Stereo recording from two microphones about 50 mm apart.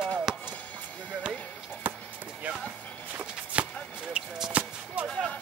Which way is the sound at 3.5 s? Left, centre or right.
Right.